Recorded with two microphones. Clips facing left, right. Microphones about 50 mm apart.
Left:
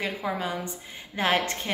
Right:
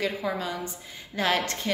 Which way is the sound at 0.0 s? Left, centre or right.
Left.